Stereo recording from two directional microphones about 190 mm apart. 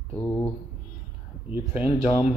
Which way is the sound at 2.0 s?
30° left (ahead or behind).